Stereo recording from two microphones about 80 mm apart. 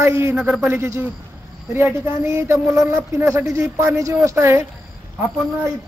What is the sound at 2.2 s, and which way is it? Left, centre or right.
Speech, right.